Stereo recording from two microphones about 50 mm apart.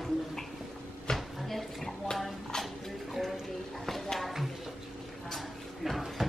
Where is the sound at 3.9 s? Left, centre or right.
Centre.